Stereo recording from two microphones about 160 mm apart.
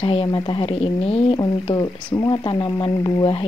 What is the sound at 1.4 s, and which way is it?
Speech, 20° left (ahead or behind).